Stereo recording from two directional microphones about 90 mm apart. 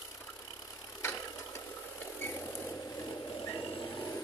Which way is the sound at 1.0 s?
30° left (ahead or behind).